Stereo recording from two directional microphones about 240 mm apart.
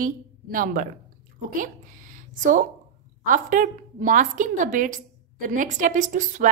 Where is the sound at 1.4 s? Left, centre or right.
Right.